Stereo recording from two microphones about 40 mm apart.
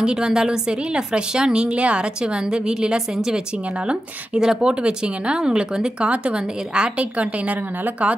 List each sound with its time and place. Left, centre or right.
0.0 s a woman's voice: right
4.4 s a woman's voice: centre
5.9 s a woman's voice: right